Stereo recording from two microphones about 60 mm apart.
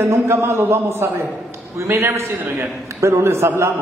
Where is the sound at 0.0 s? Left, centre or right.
Right.